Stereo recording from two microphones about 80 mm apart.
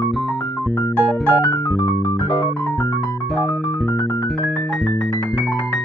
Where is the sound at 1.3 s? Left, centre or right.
Left.